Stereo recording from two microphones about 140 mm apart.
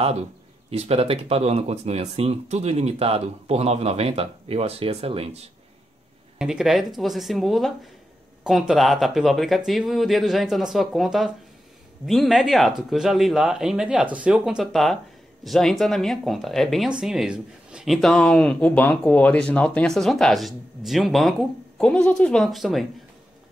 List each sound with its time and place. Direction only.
0.7 s speech: 45° right (ahead or behind)
6.3 s speech: 5° right (ahead or behind)